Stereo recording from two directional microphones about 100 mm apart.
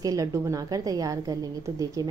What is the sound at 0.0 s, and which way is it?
A woman's voice, 35° right (ahead or behind).